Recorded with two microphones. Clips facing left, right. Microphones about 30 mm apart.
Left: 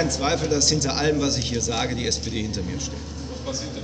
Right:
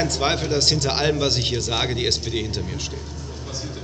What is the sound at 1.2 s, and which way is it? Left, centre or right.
A man's voice, right.